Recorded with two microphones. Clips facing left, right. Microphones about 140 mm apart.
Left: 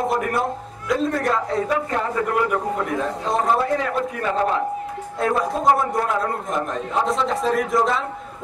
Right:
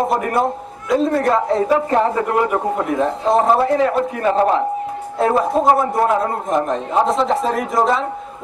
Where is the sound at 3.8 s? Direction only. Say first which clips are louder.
Right 6 dB; 40° right (ahead or behind).